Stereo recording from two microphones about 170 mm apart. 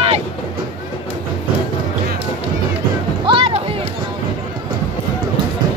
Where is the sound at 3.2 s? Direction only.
30° right (ahead or behind).